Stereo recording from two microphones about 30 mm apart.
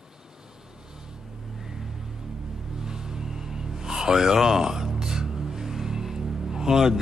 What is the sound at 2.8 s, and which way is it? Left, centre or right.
Music, right.